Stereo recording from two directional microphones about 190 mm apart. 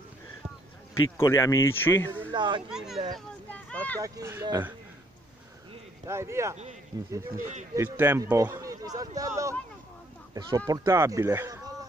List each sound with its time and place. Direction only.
1.1 s speech: 15° left (ahead or behind)
2.3 s a child's voice: 25° right (ahead or behind)
2.7 s speech: 5° right (ahead or behind)
3.5 s a sound: 5° left (ahead or behind)
4.0 s speech: 15° right (ahead or behind)
6.0 s speech: 15° right (ahead or behind)
7.3 s speech: 40° right (ahead or behind)
7.7 s speech: 10° right (ahead or behind)
10.7 s speech: 15° right (ahead or behind)